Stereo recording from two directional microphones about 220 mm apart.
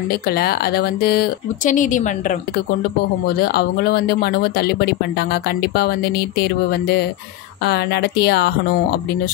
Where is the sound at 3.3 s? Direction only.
45° left (ahead or behind).